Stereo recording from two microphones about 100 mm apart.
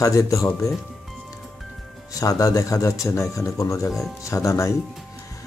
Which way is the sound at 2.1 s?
35° left (ahead or behind).